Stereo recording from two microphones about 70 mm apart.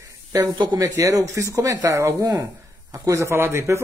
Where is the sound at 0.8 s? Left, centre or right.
Right.